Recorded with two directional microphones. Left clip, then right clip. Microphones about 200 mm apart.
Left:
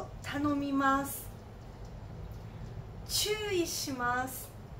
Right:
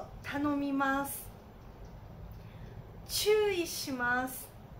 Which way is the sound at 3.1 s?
15° right (ahead or behind).